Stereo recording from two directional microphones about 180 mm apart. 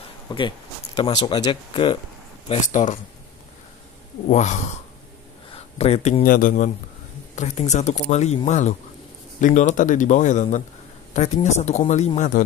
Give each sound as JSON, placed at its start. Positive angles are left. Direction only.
{"t": 0.3, "sound": "speech", "side_deg": 25}
{"t": 2.4, "sound": "speech", "side_deg": 45}
{"t": 4.3, "sound": "speech", "side_deg": 40}
{"t": 6.2, "sound": "speech", "side_deg": 50}